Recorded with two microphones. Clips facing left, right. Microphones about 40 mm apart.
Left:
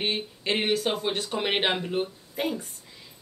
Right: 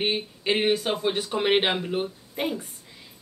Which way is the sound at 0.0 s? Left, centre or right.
Centre.